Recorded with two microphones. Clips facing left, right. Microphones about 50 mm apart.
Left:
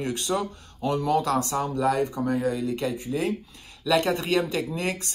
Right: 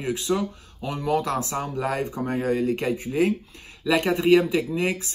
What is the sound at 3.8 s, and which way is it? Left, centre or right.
Speech, centre.